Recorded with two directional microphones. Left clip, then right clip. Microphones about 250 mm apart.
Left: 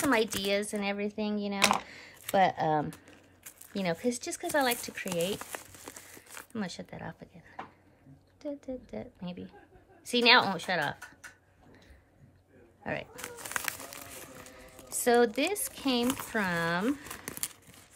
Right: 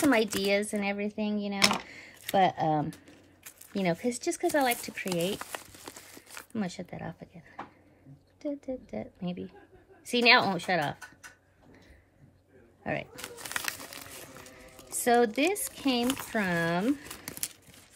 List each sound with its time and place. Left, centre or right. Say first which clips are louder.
0.0 s speech: right 2 dB; centre
5.4 s crumpling: right 2 dB; centre
6.5 s speech: right 2 dB; centre
12.8 s crumpling: right 2 dB; centre
14.2 s a sound: even; centre
16.3 s speech: right 1 dB; centre